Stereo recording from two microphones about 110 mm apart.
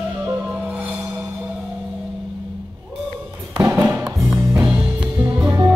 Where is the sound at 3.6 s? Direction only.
20° right (ahead or behind).